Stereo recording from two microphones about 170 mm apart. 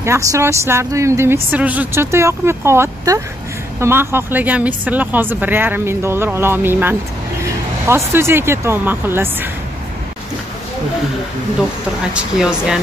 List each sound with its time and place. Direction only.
0.0 s a woman's voice: 15° right (ahead or behind)
12.1 s speech: 5° right (ahead or behind)